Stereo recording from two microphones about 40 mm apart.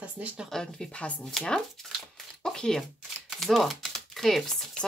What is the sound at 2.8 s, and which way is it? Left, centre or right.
Speech, centre.